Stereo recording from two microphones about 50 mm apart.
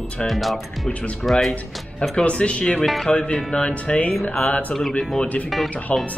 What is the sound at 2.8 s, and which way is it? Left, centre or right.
Speech, centre.